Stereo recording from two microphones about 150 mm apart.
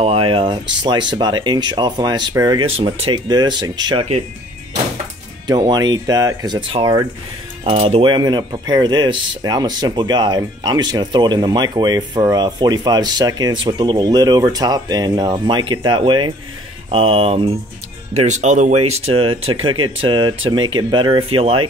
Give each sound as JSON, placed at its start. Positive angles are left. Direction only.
{"t": 0.0, "sound": "speech", "side_deg": -40}
{"t": 5.5, "sound": "speech", "side_deg": -30}
{"t": 7.6, "sound": "speech", "side_deg": -45}
{"t": 18.1, "sound": "speech", "side_deg": -50}